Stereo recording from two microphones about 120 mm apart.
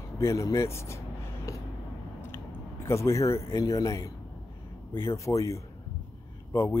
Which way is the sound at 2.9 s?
25° left (ahead or behind).